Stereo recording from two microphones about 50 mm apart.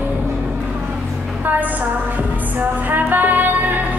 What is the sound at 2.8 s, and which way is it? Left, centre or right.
Music, right.